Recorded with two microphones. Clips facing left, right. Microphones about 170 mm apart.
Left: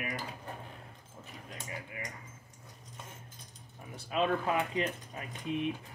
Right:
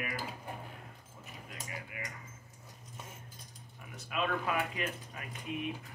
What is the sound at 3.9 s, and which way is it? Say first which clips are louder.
Speech: left 4 dB; 30° left (ahead or behind).